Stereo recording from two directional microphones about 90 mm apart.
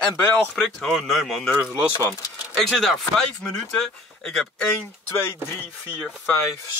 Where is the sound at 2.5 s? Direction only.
5° left (ahead or behind).